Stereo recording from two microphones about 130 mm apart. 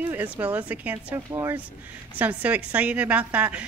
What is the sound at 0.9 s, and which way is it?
Speech, 25° right (ahead or behind).